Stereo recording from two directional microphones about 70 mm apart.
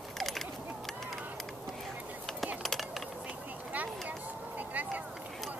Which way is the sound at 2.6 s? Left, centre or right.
Centre.